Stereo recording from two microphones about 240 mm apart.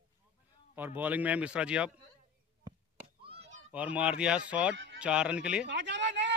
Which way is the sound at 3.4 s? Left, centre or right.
Right.